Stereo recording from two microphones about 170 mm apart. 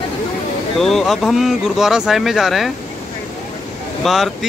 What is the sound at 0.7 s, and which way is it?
Mantra, centre (ahead or behind).